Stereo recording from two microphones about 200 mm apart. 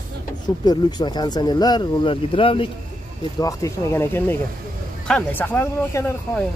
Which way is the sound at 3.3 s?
15° left (ahead or behind).